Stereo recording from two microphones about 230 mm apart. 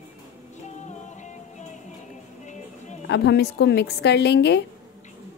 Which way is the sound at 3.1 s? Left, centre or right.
Left.